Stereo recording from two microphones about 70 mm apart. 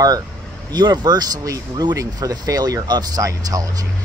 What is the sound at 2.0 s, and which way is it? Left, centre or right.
Speech, right.